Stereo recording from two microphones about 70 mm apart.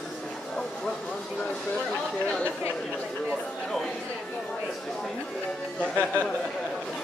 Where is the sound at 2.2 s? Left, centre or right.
Centre.